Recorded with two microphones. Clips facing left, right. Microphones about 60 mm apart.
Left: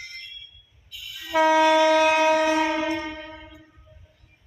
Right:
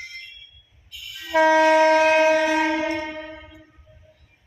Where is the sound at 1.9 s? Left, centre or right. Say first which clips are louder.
Right 2 dB; right.